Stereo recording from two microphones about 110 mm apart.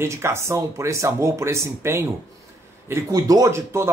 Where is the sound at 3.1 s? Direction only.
35° right (ahead or behind).